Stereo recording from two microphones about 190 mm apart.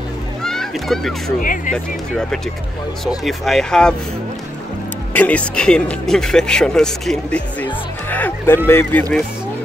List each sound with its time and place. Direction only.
0.4 s a sound: centre (ahead or behind)
1.4 s speech: 45° left (ahead or behind)
3.3 s speech: centre (ahead or behind)
5.1 s speech: 10° left (ahead or behind)